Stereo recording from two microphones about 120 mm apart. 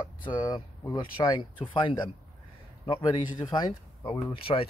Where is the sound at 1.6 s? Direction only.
45° left (ahead or behind).